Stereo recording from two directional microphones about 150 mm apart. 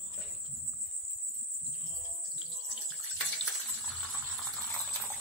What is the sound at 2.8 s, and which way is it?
Water, centre (ahead or behind).